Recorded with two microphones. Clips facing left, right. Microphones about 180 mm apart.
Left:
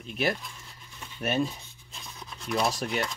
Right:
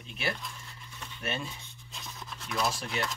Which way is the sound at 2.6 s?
55° left (ahead or behind).